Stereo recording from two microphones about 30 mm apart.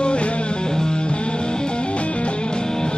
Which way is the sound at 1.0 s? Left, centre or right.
Left.